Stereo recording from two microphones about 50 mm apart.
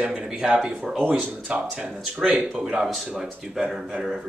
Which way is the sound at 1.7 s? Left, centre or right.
Right.